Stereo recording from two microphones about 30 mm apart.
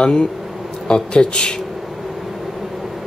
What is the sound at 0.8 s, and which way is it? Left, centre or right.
Speech, left.